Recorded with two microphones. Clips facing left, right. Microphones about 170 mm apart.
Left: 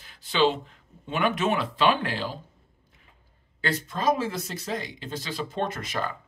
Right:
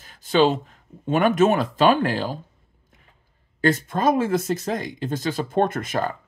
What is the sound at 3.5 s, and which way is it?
Speech, 45° right (ahead or behind).